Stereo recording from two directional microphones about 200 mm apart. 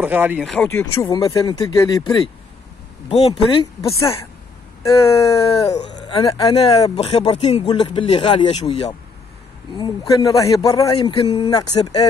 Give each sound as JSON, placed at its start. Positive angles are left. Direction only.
{"t": 0.0, "sound": "speech", "side_deg": -10}
{"t": 0.7, "sound": "speech", "side_deg": 10}
{"t": 1.0, "sound": "speech", "side_deg": 20}
{"t": 5.1, "sound": "speech", "side_deg": 30}